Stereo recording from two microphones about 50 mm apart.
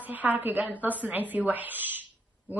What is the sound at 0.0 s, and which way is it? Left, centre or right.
A woman's voice, right.